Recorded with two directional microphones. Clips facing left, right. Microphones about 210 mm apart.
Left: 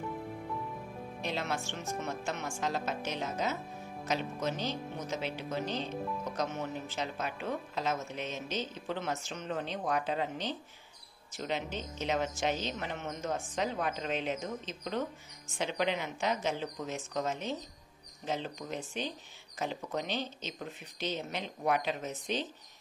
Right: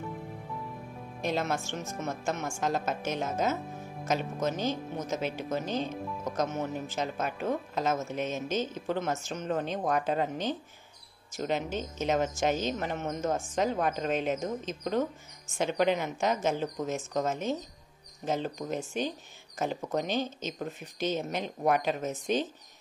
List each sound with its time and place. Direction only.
1.2 s speech: 45° right (ahead or behind)